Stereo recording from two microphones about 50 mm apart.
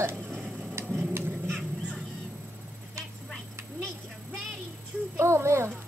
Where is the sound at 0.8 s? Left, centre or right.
Right.